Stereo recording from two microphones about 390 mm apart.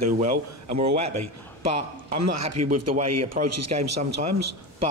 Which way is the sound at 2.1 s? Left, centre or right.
Right.